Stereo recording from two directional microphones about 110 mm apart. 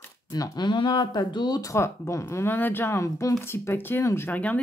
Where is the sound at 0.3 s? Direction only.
40° left (ahead or behind).